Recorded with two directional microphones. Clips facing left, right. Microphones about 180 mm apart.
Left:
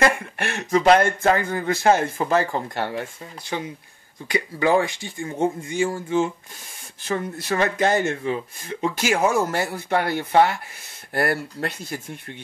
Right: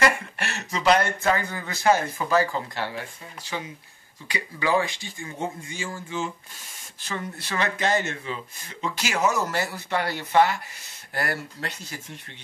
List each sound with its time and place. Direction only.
0.0 s speech: 55° left (ahead or behind)